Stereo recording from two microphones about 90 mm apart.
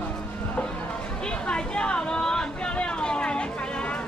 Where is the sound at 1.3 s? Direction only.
10° left (ahead or behind).